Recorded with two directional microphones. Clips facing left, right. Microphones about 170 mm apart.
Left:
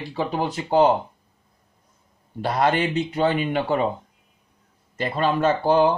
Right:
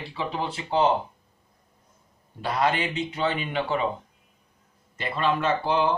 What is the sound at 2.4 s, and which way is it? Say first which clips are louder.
Speech: left 4 dB; 40° left (ahead or behind).